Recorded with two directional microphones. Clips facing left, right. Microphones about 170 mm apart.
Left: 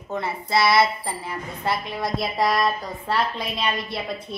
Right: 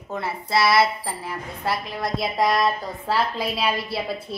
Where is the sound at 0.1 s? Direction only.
Centre (ahead or behind).